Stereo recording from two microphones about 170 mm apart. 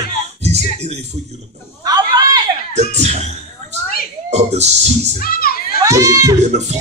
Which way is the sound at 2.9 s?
40° right (ahead or behind).